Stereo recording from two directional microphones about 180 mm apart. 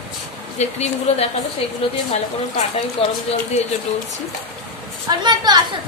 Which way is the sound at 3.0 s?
35° left (ahead or behind).